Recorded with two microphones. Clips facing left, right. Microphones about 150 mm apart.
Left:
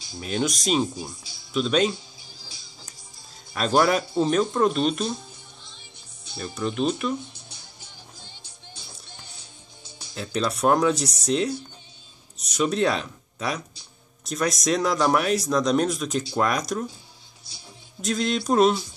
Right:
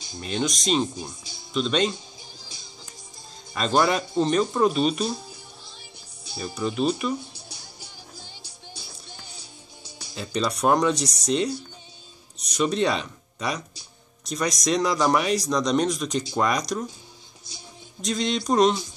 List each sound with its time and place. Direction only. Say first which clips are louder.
0.2 s speech: left 1 dB; 5° left (ahead or behind)
2.4 s music: right 2 dB; 20° right (ahead or behind)
3.5 s speech: left 1 dB; 5° left (ahead or behind)
6.2 s speech: even; 10° right (ahead or behind)
9.8 s music: right 2 dB; 10° right (ahead or behind)
10.1 s speech: even; centre (ahead or behind)
18.0 s speech: left 1 dB; 5° left (ahead or behind)